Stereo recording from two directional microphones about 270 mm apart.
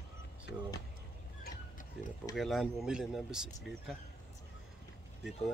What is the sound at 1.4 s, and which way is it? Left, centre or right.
Oink, left.